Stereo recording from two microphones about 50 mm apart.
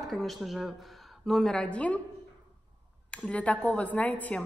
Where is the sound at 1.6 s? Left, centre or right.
Left.